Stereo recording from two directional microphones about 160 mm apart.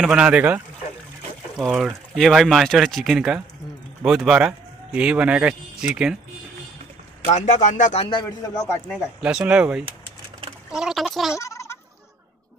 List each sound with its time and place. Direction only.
0.0 s speech: 5° right (ahead or behind)
1.6 s speech: centre (ahead or behind)
7.2 s speech: 45° left (ahead or behind)
8.0 s a man's voice: 30° left (ahead or behind)
8.8 s speech: centre (ahead or behind)
11.3 s a sound: 20° left (ahead or behind)